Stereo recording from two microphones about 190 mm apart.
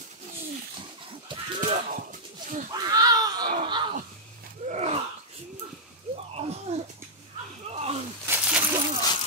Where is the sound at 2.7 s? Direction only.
20° right (ahead or behind); by 5.0 s 35° right (ahead or behind).